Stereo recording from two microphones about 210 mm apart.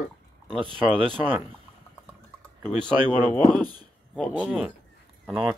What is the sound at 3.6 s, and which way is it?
Speech, 20° right (ahead or behind).